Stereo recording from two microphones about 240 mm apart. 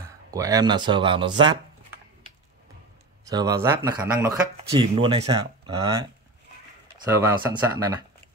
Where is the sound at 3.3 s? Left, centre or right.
Centre.